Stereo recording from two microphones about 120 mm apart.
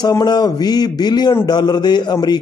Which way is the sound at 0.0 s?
35° left (ahead or behind).